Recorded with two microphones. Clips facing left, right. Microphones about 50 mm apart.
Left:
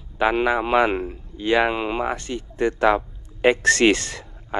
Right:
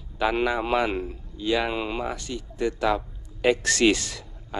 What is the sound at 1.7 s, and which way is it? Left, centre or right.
Speech, left.